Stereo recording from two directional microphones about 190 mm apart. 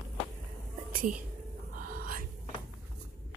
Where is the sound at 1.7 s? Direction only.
50° right (ahead or behind).